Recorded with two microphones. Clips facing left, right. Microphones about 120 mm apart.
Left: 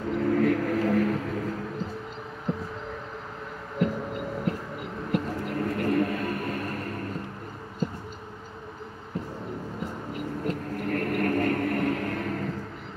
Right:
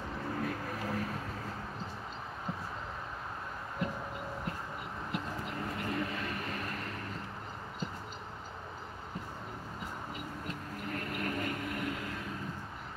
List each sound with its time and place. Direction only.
0.1 s vehicle: 90° left
5.1 s a sound: 55° left (ahead or behind)
10.4 s vehicle: 60° left (ahead or behind)